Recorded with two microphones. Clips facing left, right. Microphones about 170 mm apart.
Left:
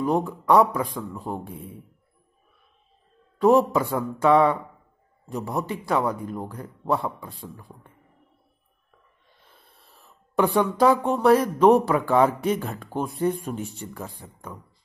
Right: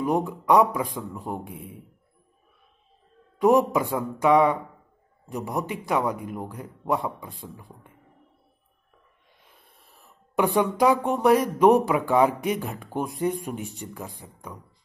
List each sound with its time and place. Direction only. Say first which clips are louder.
0.0 s speech: left 1 dB; 15° right (ahead or behind)
3.3 s speech: left 1 dB; 15° right (ahead or behind)
9.4 s speech: left 1 dB; 15° right (ahead or behind)